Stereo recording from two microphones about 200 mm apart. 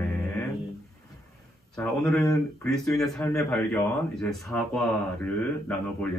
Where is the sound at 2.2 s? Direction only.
15° left (ahead or behind).